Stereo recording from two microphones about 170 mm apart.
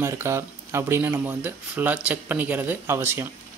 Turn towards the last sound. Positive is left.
turn(degrees=-15)  # may be behind; listen again after turning